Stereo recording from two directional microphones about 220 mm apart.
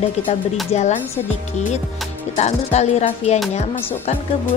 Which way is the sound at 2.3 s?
30° left (ahead or behind).